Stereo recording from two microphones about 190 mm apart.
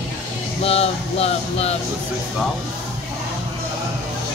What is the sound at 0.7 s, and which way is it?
Speech, 30° left (ahead or behind).